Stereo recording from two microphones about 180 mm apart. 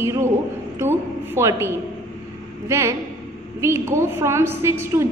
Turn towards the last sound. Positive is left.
turn(degrees=-15)  # may be behind; listen again after turning